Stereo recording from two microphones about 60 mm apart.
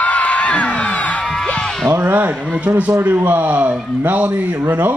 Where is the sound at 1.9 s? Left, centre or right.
Right.